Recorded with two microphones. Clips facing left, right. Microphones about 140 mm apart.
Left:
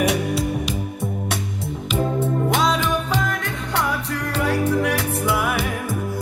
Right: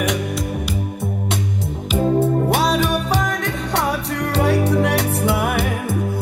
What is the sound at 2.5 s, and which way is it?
Music, 60° right (ahead or behind).